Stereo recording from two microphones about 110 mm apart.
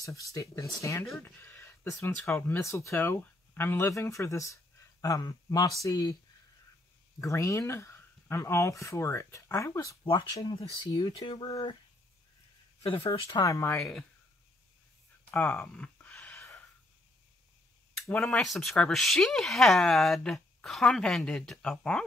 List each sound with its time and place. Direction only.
0.0 s speech: 30° left (ahead or behind)
7.2 s speech: 30° left (ahead or behind)
12.8 s speech: 60° left (ahead or behind)
13.4 s speech: 30° left (ahead or behind)
15.4 s a sound: 15° left (ahead or behind)
18.2 s speech: 5° left (ahead or behind)